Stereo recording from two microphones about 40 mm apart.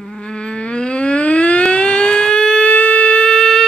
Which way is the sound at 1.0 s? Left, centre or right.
Left.